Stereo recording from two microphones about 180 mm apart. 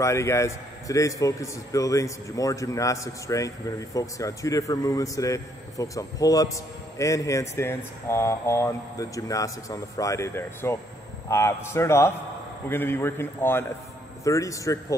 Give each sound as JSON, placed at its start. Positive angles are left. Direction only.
{"t": 0.0, "sound": "a man's voice", "side_deg": 15}